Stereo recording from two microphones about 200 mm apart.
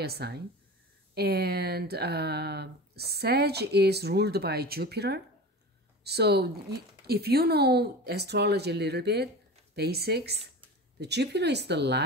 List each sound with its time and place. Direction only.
0.0 s speech: 55° right (ahead or behind)